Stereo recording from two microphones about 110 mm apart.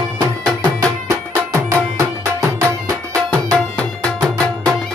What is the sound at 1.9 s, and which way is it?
Music, 25° right (ahead or behind).